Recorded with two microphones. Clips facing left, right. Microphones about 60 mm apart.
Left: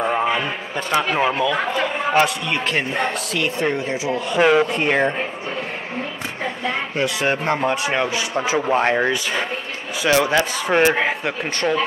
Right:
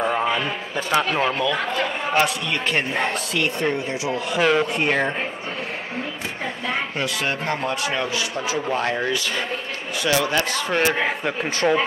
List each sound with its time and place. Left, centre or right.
0.0 s a sound: centre
0.7 s a woman's voice: centre
1.1 s a woman's voice: centre
4.4 s speech: centre
4.6 s a woman's voice: centre
7.2 s speech: left
11.6 s a woman's voice: centre